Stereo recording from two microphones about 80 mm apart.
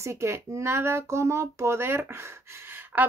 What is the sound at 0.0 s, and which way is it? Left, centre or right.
Speech, right.